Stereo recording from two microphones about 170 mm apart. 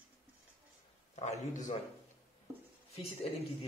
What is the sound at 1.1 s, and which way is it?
Speech, 40° left (ahead or behind).